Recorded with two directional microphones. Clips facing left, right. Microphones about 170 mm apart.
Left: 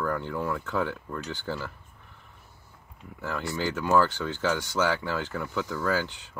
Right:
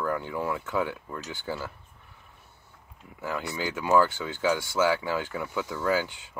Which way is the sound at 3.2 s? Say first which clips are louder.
Left 1 dB; 10° right (ahead or behind).